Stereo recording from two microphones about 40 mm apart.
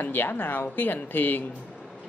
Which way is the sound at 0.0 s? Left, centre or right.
Left.